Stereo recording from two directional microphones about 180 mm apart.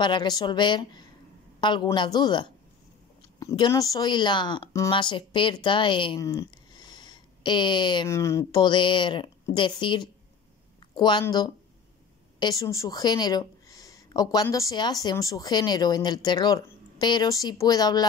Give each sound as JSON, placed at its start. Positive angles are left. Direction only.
{"t": 0.0, "sound": "a woman's voice", "side_deg": 25}